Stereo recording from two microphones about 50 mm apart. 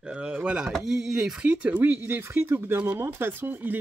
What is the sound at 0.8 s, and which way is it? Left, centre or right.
Speech, centre.